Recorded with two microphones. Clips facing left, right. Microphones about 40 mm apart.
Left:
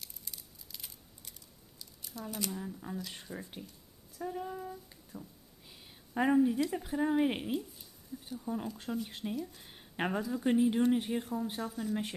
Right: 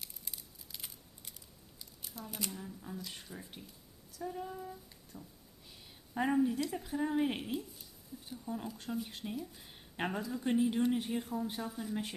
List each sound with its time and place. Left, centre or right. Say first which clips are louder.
0.0 s a sound: even; centre
2.1 s speech: left 5 dB; right
2.5 s speech: left 5 dB; centre
5.7 s a sound: left 1 dB; centre
6.9 s speech: left 3 dB; centre
9.3 s speech: left 4 dB; centre
9.6 s speech: left 3 dB; centre